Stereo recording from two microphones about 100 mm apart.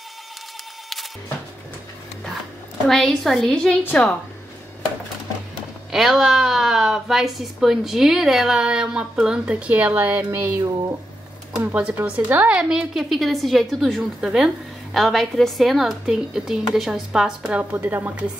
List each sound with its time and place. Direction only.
2.9 s a woman's voice: 5° left (ahead or behind)
5.9 s a woman's voice: 5° right (ahead or behind); by 10.5 s 20° right (ahead or behind)
11.5 s a woman's voice: 10° right (ahead or behind)
17.7 s a woman's voice: 20° right (ahead or behind)